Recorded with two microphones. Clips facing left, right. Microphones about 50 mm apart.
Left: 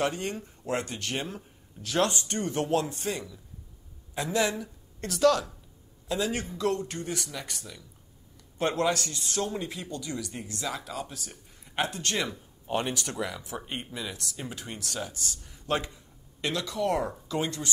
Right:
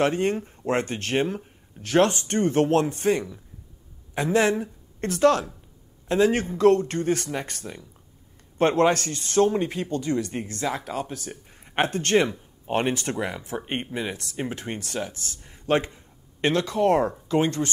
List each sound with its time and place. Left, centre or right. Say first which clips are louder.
0.0 s speech: right 7 dB; right